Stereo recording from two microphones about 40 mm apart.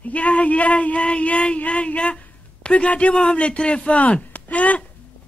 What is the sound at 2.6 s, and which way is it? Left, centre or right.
Speech, left.